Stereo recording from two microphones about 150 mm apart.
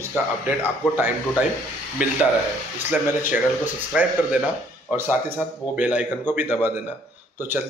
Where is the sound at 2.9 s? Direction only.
10° right (ahead or behind).